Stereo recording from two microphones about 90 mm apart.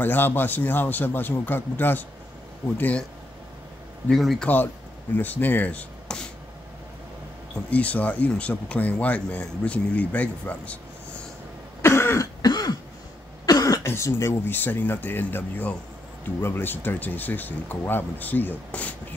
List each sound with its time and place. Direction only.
0.0 s speech: 20° left (ahead or behind)
4.1 s a man's voice: centre (ahead or behind)
5.1 s speech: 20° left (ahead or behind)
7.7 s speech: 15° left (ahead or behind)
11.8 s cough: 30° left (ahead or behind)
12.4 s throat clearing: 45° left (ahead or behind)
13.5 s cough: 45° left (ahead or behind)
13.8 s speech: 30° left (ahead or behind)